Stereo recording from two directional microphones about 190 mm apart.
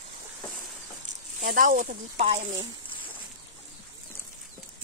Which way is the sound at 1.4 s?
45° right (ahead or behind).